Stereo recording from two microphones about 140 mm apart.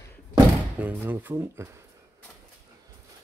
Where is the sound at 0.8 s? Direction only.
15° right (ahead or behind).